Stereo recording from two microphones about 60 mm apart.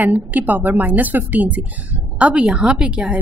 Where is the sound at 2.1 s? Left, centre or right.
Centre.